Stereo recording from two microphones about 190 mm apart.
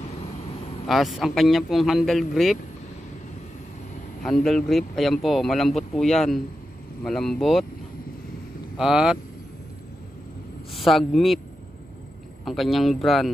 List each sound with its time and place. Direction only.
0.8 s speech: centre (ahead or behind)
4.2 s speech: 5° left (ahead or behind)
8.7 s speech: 5° right (ahead or behind)
10.7 s speech: centre (ahead or behind)
12.4 s speech: centre (ahead or behind)